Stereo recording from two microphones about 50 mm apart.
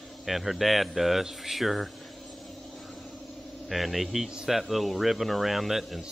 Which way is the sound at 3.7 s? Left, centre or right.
Centre.